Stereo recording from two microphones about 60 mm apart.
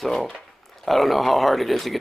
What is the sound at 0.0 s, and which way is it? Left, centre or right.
Speech, centre.